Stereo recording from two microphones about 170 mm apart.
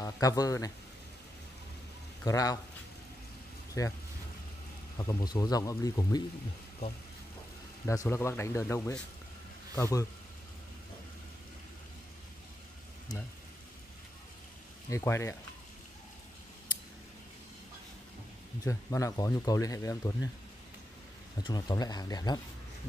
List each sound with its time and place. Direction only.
0.0 s speech: 20° left (ahead or behind)
2.2 s speech: 20° left (ahead or behind)
3.8 s speech: 20° left (ahead or behind)
4.9 s speech: 25° left (ahead or behind)
7.8 s speech: 15° left (ahead or behind)
13.1 s speech: 20° left (ahead or behind)
14.9 s speech: 15° left (ahead or behind)
18.6 s speech: 20° left (ahead or behind)
21.4 s speech: 25° left (ahead or behind)